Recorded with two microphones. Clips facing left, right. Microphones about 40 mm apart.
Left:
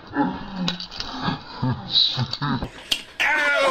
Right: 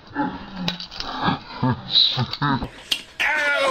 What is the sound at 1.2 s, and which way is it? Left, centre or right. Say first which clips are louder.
Roaring cats: right 4 dB; centre.